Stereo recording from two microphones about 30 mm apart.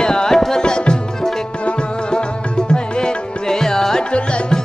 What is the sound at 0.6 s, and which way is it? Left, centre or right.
Music, left.